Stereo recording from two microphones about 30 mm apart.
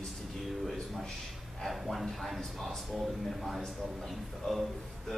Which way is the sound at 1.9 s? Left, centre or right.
Centre.